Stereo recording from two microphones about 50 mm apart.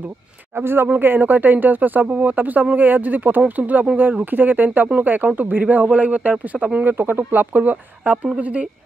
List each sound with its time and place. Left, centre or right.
0.6 s speech: right